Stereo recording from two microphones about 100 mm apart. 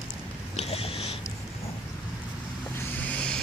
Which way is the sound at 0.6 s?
80° left.